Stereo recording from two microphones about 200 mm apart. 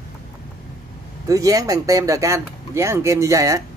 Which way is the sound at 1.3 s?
15° right (ahead or behind).